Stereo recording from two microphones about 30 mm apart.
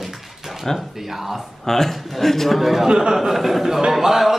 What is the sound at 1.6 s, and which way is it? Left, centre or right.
Speech, centre.